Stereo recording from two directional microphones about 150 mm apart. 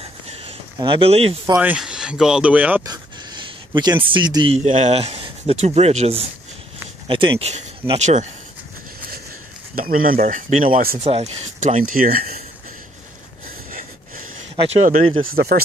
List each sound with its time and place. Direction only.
0.3 s a sound: 40° right (ahead or behind)
0.7 s speech: 35° right (ahead or behind)
1.5 s speech: 10° right (ahead or behind)
3.7 s speech: 30° right (ahead or behind)
4.6 s speech: 50° right (ahead or behind)
9.8 s speech: 70° right (ahead or behind)
11.1 s speech: 40° right (ahead or behind); by 12.4 s 70° right (ahead or behind)
13.7 s snort: 60° right (ahead or behind)
14.6 s speech: 35° right (ahead or behind)
15.3 s speech: 90° right